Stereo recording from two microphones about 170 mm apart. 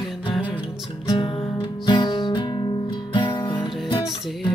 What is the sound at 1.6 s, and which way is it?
Music, 25° left (ahead or behind).